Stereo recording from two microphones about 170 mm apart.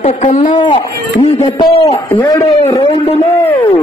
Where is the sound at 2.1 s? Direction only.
15° left (ahead or behind).